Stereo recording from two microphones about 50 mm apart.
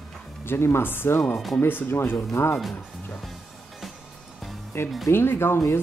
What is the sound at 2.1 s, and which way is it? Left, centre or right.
Speech, left.